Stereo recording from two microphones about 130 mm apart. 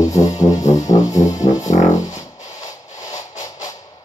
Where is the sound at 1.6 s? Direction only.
65° left (ahead or behind).